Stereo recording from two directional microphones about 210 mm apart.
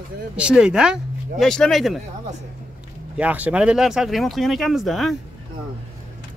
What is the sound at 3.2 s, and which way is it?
Speech, 5° right (ahead or behind).